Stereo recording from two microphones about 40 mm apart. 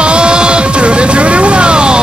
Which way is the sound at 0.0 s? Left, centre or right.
Right.